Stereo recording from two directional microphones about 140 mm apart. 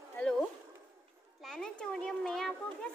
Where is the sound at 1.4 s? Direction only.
5° left (ahead or behind).